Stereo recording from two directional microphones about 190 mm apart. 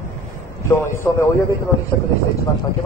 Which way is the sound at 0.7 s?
15° left (ahead or behind).